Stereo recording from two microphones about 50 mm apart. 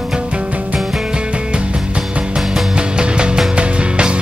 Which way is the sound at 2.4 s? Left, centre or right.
Centre.